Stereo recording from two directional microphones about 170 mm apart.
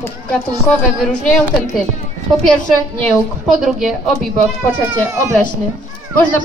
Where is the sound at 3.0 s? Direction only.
Centre (ahead or behind).